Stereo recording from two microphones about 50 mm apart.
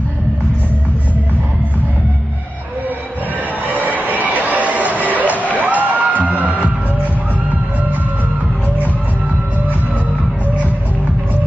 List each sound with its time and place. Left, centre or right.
3.6 s music: right
5.1 s a sound: right
5.7 s music: right